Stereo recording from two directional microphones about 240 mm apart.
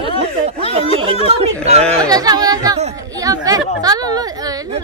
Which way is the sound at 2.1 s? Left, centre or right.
Centre.